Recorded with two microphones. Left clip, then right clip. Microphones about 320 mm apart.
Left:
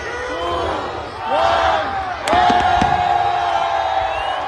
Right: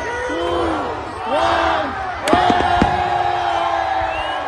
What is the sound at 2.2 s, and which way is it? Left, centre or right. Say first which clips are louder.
Music: left 1 dB; left.